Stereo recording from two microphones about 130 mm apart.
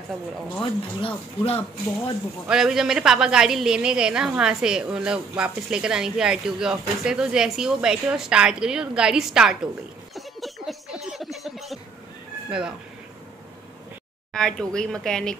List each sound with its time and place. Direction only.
0.6 s speech: 45° left (ahead or behind)
2.4 s a woman's voice: 5° right (ahead or behind)
10.1 s a sound: centre (ahead or behind)
12.4 s speech: 5° right (ahead or behind)
14.3 s a woman's voice: 5° left (ahead or behind)